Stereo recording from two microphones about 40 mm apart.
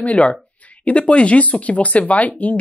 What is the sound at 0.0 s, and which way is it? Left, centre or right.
Speech, left.